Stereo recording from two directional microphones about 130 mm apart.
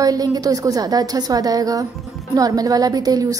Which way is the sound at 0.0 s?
30° right (ahead or behind).